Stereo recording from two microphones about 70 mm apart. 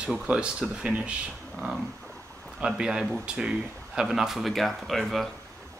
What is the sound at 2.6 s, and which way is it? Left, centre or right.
Speech, centre.